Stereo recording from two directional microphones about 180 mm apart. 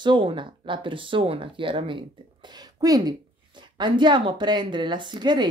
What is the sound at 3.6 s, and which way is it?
A woman's voice, 25° right (ahead or behind).